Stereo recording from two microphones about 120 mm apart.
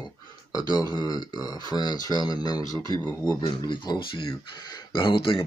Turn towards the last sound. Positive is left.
turn(degrees=40)  # may be behind; listen again after turning